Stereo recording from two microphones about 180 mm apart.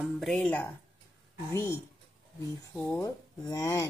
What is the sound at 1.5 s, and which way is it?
Speech, 15° left (ahead or behind).